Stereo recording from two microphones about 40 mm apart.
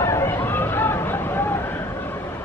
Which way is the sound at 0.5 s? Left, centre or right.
Left.